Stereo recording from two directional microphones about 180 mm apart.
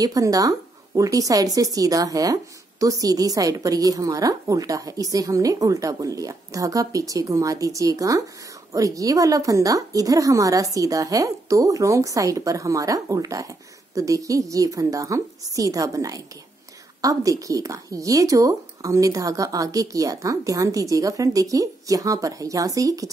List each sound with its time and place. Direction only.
0.0 s speech: 20° right (ahead or behind)